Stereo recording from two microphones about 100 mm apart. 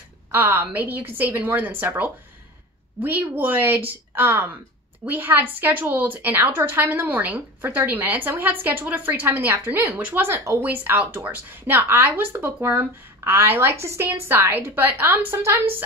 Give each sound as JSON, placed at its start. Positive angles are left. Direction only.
{"t": 0.3, "sound": "a woman's voice", "side_deg": -20}